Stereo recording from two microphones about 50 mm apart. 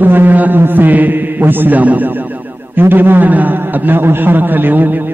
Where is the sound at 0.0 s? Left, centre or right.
Right.